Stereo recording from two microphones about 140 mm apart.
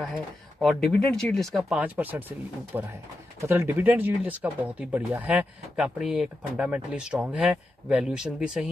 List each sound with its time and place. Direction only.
0.6 s speech: 5° left (ahead or behind)
1.8 s speech: 10° right (ahead or behind)